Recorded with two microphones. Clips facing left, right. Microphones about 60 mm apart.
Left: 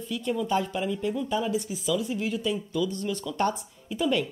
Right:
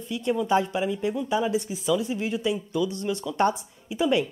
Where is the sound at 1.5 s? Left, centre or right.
Right.